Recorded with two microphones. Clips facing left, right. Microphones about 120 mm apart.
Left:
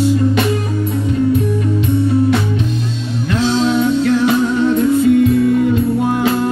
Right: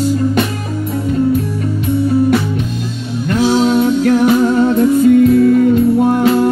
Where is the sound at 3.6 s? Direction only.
45° right (ahead or behind).